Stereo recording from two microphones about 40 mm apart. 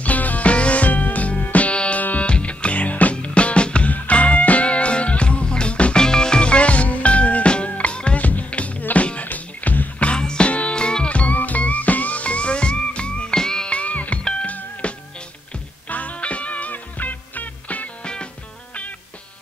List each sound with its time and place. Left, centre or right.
0.0 s music: left
2.0 s music: left
2.2 s music: left
10.1 s music: left
11.1 s music: left; by 13.7 s centre
13.7 s music: left
18.0 s music: left